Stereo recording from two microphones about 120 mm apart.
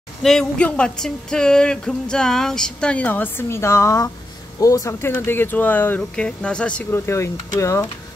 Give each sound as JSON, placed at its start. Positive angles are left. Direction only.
{"t": 0.2, "sound": "speech", "side_deg": 5}